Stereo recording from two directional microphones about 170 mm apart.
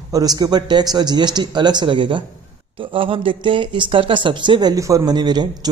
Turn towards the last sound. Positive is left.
turn(degrees=-25)  # may be behind; listen again after turning